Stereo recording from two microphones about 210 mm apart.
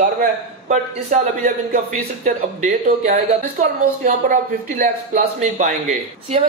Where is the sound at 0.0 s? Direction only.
40° right (ahead or behind).